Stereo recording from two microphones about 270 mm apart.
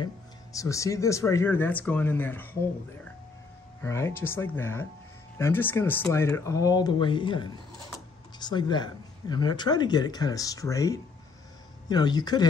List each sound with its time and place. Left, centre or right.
0.0 s speech: centre
3.8 s speech: centre